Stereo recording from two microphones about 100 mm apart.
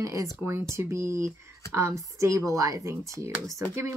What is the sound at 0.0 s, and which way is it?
Speech, 30° right (ahead or behind).